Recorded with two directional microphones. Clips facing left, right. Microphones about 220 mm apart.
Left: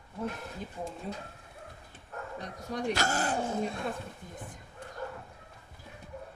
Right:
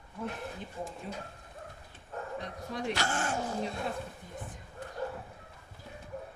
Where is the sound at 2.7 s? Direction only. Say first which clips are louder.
Left 3 dB; 45° left (ahead or behind).